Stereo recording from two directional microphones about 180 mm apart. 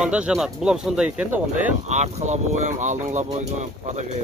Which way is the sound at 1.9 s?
40° right (ahead or behind).